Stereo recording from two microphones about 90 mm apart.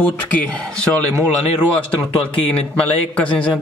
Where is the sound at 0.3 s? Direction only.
15° left (ahead or behind).